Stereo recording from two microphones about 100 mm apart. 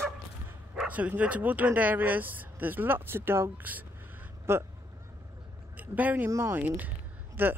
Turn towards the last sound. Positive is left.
turn(degrees=-20)  # may be behind; listen again after turning